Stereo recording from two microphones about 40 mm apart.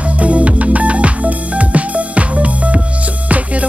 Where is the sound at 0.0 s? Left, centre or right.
Right.